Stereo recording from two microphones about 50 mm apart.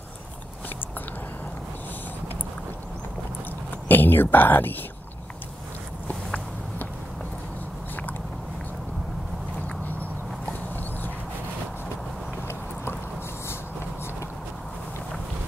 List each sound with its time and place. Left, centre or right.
3.9 s speech: left
6.0 s walk: left